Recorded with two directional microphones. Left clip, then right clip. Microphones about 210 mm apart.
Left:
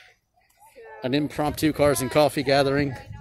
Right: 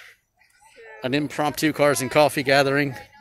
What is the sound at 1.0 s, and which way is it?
Speech, centre (ahead or behind).